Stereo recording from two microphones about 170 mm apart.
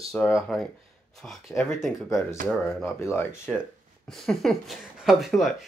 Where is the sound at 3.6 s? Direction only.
5° left (ahead or behind).